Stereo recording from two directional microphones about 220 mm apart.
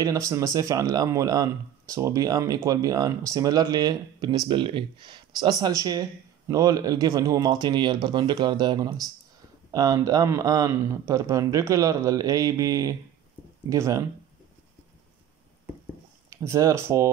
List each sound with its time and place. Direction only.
0.0 s speech: 15° right (ahead or behind)
16.3 s speech: 15° right (ahead or behind)